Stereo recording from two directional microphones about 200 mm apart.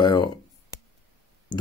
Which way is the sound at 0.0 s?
25° left (ahead or behind).